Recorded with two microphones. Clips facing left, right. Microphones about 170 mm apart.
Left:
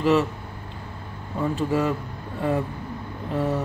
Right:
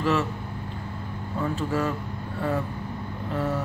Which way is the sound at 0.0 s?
15° left (ahead or behind).